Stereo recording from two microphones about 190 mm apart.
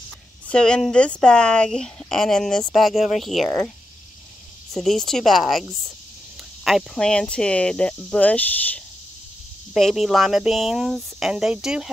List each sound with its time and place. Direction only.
0.5 s speech: 5° left (ahead or behind)
4.7 s speech: centre (ahead or behind)